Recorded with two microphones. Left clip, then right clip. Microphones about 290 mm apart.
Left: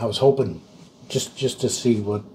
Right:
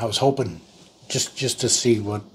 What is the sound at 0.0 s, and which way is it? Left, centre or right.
Speech, right.